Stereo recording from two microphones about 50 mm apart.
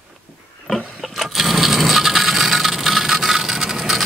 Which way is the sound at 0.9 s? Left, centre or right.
Centre.